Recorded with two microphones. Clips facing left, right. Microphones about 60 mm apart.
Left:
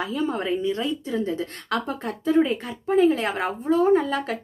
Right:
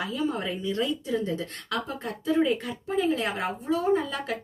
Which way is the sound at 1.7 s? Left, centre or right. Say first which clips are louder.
Left 4 dB; left.